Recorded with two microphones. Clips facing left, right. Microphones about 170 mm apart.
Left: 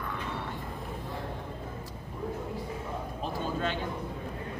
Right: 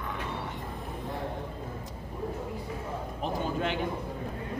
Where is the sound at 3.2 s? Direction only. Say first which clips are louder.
Right 2 dB; 15° right (ahead or behind).